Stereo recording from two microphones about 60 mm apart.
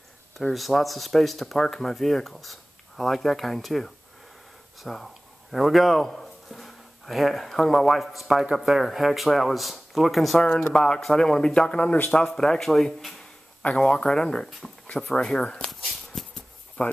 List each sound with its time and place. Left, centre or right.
0.4 s speech: centre; by 12.1 s left
12.3 s speech: centre
15.1 s a sound: centre
16.8 s speech: left